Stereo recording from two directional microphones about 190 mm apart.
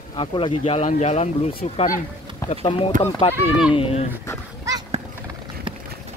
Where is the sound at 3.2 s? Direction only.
30° left (ahead or behind).